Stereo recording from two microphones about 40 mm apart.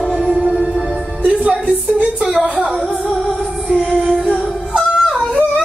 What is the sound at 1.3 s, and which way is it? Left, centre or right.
Music, right.